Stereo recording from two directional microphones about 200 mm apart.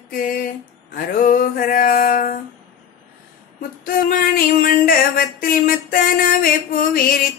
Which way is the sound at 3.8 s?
45° left (ahead or behind).